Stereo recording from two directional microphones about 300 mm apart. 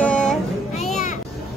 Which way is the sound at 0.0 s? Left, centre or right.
Centre.